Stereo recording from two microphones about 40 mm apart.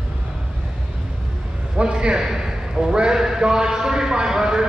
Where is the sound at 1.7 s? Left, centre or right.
Right.